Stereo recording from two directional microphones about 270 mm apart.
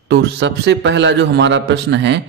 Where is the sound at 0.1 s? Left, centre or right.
Right.